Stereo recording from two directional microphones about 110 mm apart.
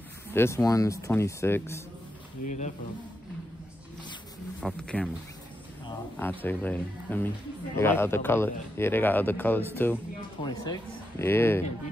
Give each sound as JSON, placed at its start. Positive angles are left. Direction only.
{"t": 0.3, "sound": "a man's voice", "side_deg": 25}
{"t": 4.6, "sound": "speech", "side_deg": 10}
{"t": 6.1, "sound": "a man's voice", "side_deg": 15}
{"t": 10.4, "sound": "speech", "side_deg": 35}
{"t": 11.1, "sound": "a man's voice", "side_deg": 20}